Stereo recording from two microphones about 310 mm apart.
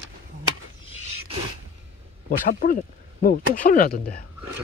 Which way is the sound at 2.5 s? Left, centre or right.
Left.